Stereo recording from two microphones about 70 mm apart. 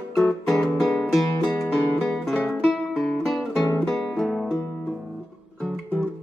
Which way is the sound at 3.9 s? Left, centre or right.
Centre.